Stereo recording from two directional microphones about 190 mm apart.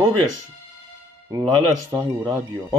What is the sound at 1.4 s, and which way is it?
Speech, 15° right (ahead or behind).